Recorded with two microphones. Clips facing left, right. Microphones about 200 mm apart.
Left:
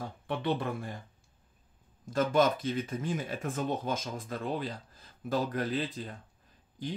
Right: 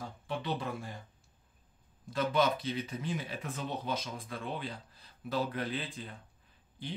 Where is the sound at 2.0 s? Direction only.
45° left (ahead or behind).